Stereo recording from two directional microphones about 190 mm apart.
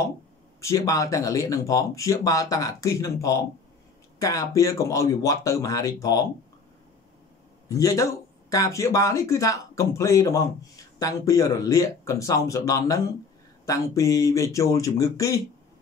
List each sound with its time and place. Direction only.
0.6 s speech: 15° left (ahead or behind)
7.6 s speech: 15° left (ahead or behind)